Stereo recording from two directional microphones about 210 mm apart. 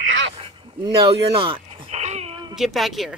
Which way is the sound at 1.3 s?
25° right (ahead or behind).